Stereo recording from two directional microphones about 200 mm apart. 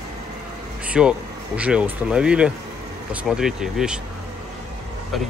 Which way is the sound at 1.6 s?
5° right (ahead or behind).